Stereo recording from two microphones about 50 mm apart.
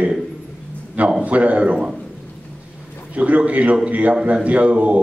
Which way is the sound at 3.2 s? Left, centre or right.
Right.